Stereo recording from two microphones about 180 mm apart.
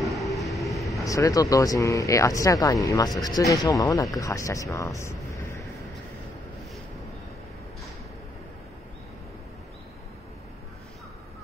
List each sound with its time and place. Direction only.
0.0 s train: centre (ahead or behind)
1.0 s speech: 20° left (ahead or behind)